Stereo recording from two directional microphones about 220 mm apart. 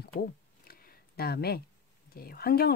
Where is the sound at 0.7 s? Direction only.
45° left (ahead or behind).